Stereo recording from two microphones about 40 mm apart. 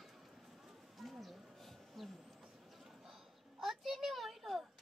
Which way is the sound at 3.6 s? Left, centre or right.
Centre.